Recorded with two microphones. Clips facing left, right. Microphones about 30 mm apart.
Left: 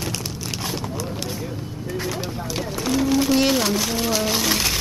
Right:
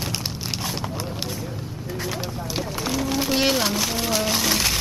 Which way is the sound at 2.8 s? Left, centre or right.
Centre.